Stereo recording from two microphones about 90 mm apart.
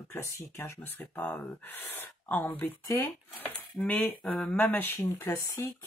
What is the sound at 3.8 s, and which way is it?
Cutlery, 10° left (ahead or behind).